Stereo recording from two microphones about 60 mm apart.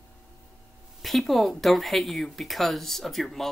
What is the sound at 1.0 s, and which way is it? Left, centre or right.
Speech, centre.